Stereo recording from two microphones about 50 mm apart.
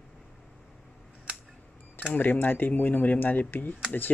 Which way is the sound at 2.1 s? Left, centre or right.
Left.